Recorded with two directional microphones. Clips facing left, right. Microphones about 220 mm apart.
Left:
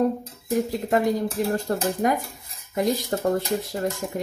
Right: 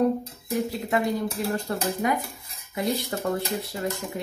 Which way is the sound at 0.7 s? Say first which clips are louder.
Left 4 dB; 40° left (ahead or behind).